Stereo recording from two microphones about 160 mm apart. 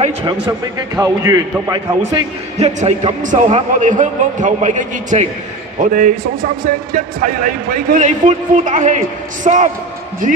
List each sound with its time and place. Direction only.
0.5 s speech: 20° right (ahead or behind)
2.6 s speech: 45° right (ahead or behind)
5.8 s speech: 60° right (ahead or behind)